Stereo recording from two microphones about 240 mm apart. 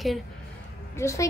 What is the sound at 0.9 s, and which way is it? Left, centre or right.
Speech, centre.